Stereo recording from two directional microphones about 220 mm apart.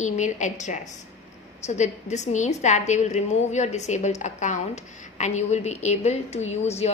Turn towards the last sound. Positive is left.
turn(degrees=30)  # may be behind; listen again after turning